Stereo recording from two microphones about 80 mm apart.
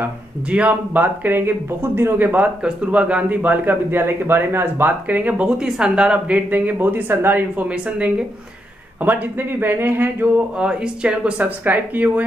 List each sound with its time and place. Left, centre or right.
0.0 s speech: centre
10.6 s speech: centre